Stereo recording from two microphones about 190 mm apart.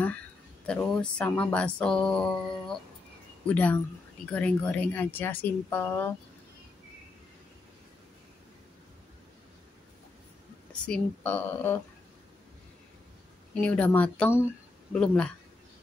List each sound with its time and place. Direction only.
0.7 s speech: 5° left (ahead or behind)
10.9 s speech: 10° left (ahead or behind)
13.6 s speech: 5° left (ahead or behind)